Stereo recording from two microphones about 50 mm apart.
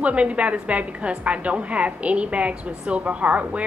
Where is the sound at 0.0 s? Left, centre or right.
Right.